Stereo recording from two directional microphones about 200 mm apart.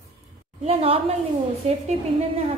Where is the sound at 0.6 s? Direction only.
30° right (ahead or behind).